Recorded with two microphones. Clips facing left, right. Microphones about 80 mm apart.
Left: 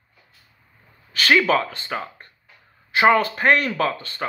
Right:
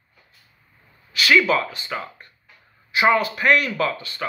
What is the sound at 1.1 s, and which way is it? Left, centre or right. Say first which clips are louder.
Speech: even; left.